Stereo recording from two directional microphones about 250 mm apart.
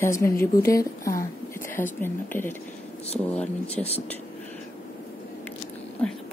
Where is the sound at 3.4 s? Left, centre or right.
Left.